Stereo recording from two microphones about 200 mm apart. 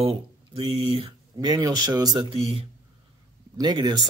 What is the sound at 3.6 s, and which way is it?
Speech, 20° right (ahead or behind).